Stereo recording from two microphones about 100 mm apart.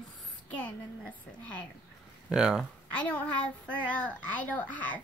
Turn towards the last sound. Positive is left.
turn(degrees=15)  # may be behind; listen again after turning